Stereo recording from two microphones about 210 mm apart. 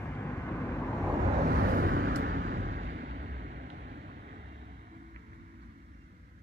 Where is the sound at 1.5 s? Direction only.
45° right (ahead or behind).